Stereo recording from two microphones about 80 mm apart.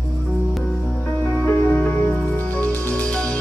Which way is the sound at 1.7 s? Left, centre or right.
Left.